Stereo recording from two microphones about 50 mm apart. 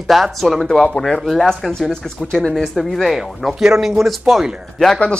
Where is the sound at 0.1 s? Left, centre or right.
Centre.